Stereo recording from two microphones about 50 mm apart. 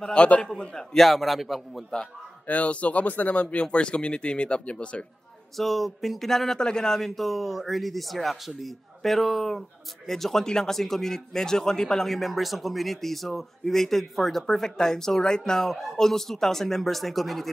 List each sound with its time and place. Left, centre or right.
0.0 s speech: left
0.9 s speech: centre
2.4 s speech: left
3.7 s speech: left
5.6 s speech: centre